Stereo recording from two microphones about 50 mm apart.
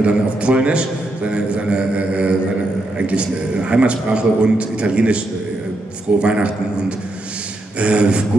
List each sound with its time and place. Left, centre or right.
0.0 s a man's voice: right
7.8 s a man's voice: right